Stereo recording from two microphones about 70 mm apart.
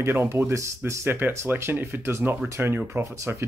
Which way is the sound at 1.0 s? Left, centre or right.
Right.